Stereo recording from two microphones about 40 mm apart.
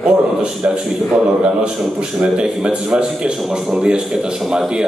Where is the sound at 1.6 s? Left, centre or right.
Right.